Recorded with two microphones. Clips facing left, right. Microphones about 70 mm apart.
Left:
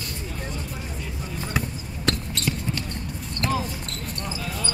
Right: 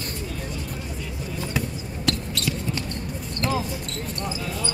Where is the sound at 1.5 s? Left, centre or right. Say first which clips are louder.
Even; left.